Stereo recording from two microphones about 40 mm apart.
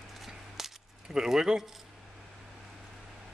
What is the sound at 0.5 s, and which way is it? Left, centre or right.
Keys jangling, centre.